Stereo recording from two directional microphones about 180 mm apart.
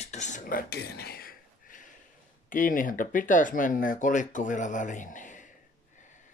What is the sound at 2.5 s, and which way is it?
Speech, 50° left (ahead or behind).